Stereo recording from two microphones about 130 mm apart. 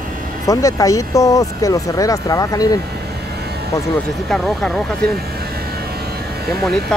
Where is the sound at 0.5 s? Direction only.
25° left (ahead or behind).